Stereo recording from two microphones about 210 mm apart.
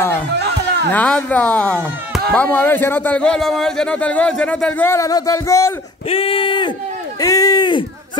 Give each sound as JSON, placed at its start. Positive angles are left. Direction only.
{"t": 0.4, "sound": "a sound", "side_deg": -50}
{"t": 0.9, "sound": "speech", "side_deg": 5}
{"t": 6.0, "sound": "speech", "side_deg": 25}